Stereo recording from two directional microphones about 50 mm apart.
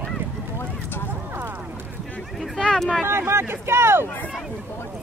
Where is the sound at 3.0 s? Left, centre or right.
Right.